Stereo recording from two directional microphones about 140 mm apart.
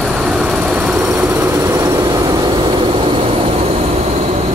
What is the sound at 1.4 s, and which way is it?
Vehicle, 20° right (ahead or behind).